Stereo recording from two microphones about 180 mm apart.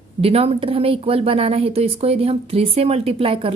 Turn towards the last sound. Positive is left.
turn(degrees=-30)  # may be behind; listen again after turning